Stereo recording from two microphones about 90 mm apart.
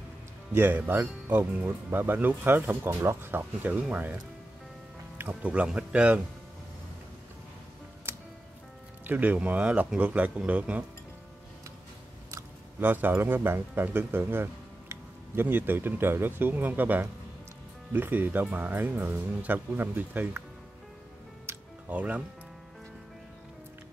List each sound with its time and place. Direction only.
0.5 s speech: 20° right (ahead or behind)
5.3 s speech: 15° right (ahead or behind)
9.0 s speech: 20° right (ahead or behind)
12.8 s speech: 20° right (ahead or behind)
21.5 s music: 20° right (ahead or behind)